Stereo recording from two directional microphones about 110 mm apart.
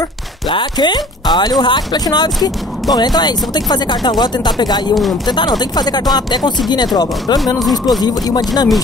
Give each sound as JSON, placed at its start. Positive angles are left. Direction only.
{"t": 0.5, "sound": "speech", "side_deg": 45}
{"t": 8.0, "sound": "speech", "side_deg": 35}